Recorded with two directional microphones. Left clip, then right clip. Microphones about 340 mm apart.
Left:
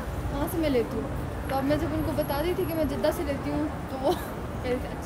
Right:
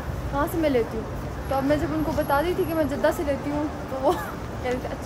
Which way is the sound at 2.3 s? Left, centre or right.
Centre.